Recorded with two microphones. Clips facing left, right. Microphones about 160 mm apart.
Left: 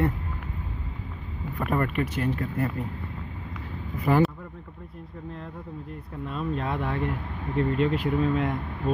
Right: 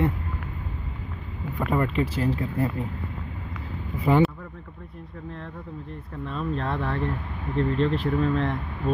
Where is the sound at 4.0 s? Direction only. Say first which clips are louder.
Right 1 dB; 20° right (ahead or behind).